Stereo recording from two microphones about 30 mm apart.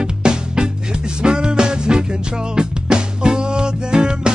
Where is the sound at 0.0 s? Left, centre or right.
Right.